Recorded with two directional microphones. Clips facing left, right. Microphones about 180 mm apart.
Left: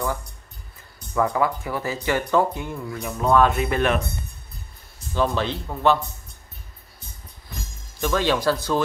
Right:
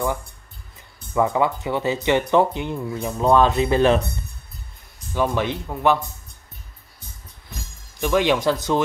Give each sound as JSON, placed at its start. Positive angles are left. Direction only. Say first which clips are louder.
{"t": 0.9, "sound": "speech", "louder": "right 2 dB", "side_deg": -25}
{"t": 5.1, "sound": "speech", "louder": "right 1 dB", "side_deg": -15}
{"t": 8.0, "sound": "speech", "louder": "right 3 dB", "side_deg": -15}